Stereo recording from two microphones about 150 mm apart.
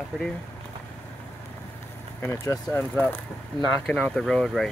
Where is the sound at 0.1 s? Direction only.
Centre (ahead or behind).